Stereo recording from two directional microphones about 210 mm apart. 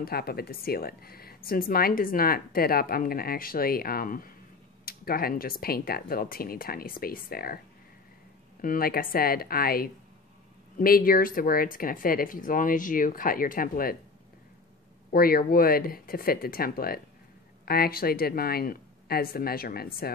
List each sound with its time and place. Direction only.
0.0 s speech: 45° left (ahead or behind)
15.0 s speech: 45° left (ahead or behind)